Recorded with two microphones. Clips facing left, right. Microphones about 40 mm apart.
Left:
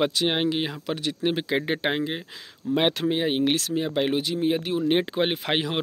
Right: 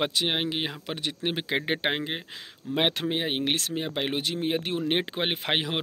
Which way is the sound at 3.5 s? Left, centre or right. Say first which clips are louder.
Left 4 dB; right.